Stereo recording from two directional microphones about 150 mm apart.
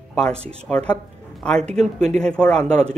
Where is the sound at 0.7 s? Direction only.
5° left (ahead or behind).